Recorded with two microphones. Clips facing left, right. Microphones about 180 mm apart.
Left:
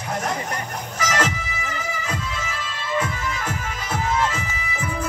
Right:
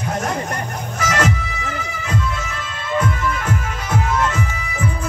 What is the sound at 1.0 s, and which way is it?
Music, 55° right (ahead or behind).